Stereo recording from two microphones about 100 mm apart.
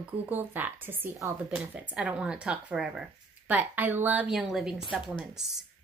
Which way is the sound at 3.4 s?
15° right (ahead or behind).